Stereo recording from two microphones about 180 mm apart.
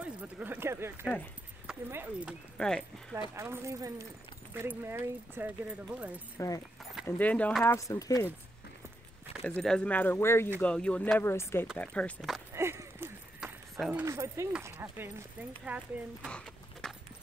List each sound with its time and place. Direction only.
0.0 s speech: 10° right (ahead or behind)
2.5 s speech: 5° left (ahead or behind)
3.3 s speech: 15° right (ahead or behind)
6.3 s speech: 20° left (ahead or behind)
9.4 s speech: 5° left (ahead or behind)
12.5 s a sound: 15° right (ahead or behind)
13.4 s a sound: 5° right (ahead or behind)
14.0 s speech: 15° right (ahead or behind)
16.3 s horse: 5° left (ahead or behind)